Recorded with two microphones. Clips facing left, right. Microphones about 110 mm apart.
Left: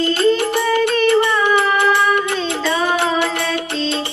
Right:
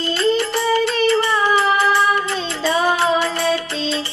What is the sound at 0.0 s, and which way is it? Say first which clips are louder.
Music: left 3 dB; 55° left (ahead or behind).